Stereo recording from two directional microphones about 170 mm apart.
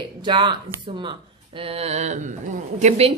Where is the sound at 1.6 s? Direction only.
35° right (ahead or behind).